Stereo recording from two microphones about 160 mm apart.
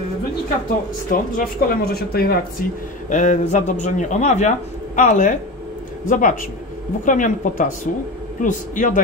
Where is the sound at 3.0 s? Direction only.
50° left (ahead or behind).